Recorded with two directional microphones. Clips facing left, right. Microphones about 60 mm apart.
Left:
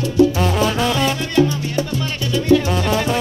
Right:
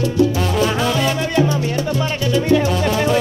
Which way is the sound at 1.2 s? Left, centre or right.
Right.